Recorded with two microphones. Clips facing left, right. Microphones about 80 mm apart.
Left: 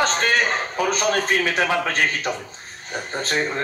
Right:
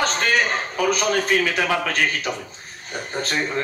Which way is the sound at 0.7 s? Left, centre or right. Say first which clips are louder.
Right 2 dB; left.